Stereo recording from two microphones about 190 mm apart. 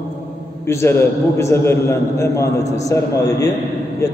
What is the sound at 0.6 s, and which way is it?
A man's voice, 10° left (ahead or behind).